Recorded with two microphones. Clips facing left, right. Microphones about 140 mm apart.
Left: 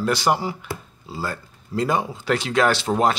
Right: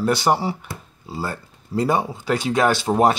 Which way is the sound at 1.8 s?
25° right (ahead or behind).